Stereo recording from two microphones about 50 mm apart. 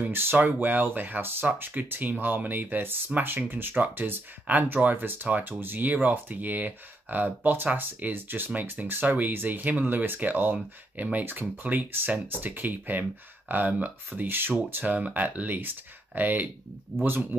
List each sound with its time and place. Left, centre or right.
0.4 s speech: right
17.0 s speech: right